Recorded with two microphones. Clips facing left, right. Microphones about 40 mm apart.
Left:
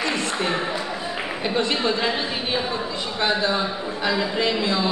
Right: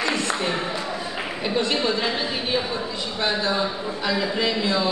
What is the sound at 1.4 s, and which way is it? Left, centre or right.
Speech, left.